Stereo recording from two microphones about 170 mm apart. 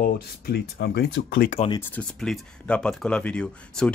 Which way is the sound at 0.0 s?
70° left (ahead or behind).